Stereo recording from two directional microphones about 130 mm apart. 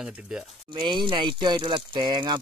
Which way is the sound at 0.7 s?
35° right (ahead or behind).